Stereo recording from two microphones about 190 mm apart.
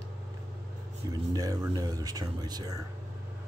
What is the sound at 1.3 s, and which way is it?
Speech, 20° right (ahead or behind).